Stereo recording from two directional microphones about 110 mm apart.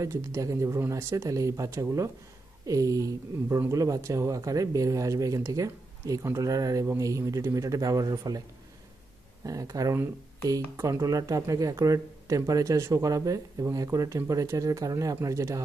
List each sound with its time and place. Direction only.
0.0 s speech: 25° right (ahead or behind)
9.5 s speech: 35° right (ahead or behind)